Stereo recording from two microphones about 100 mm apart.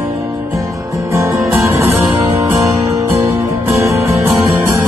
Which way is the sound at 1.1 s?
30° right (ahead or behind).